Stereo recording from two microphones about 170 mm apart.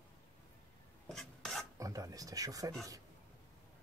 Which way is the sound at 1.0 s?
Centre (ahead or behind).